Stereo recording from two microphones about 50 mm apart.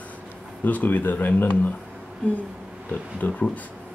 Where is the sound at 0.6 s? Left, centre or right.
Left.